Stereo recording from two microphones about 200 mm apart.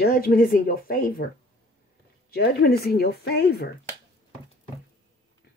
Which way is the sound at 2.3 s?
50° left (ahead or behind).